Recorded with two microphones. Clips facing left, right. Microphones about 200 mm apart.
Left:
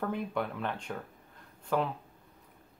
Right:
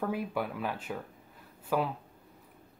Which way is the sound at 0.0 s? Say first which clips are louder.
Right 1 dB; 5° right (ahead or behind).